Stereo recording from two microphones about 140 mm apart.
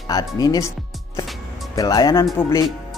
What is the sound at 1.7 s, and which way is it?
Speech, 25° left (ahead or behind).